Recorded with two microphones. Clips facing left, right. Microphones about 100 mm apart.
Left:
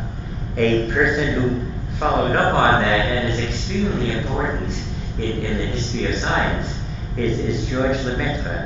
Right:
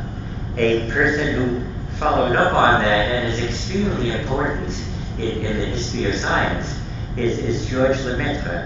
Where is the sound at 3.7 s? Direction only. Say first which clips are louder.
Right 1 dB; 20° right (ahead or behind).